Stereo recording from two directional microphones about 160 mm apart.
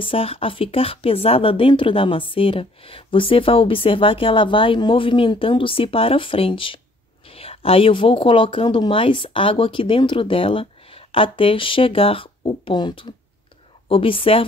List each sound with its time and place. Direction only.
0.0 s speech: 35° left (ahead or behind)